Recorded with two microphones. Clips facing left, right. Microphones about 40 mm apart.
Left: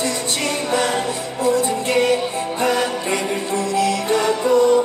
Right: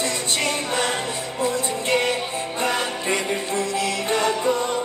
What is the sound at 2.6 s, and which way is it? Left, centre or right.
Music, right.